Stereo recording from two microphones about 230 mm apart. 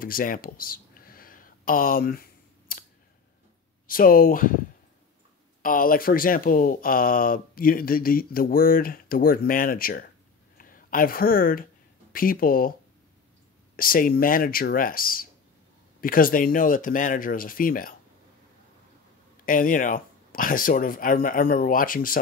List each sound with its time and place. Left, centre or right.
0.0 s a sound: left
3.8 s speech: left
5.6 s speech: left
13.7 s speech: left
19.4 s speech: left